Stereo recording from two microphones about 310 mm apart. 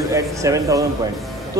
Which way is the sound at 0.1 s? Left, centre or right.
Centre.